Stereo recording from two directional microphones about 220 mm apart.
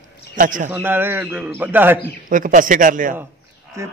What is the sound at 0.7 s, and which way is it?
A man's voice, 10° right (ahead or behind).